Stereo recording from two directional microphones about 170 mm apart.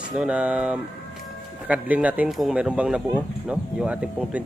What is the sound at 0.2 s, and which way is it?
A man's voice, 5° right (ahead or behind).